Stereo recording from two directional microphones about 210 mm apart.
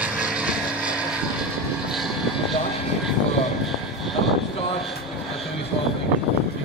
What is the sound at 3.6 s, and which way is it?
Vehicle, centre (ahead or behind).